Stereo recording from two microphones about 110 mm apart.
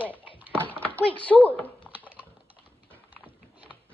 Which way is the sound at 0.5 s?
15° left (ahead or behind).